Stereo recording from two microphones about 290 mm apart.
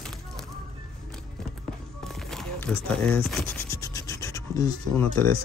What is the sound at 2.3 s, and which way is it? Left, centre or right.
Scratch, centre.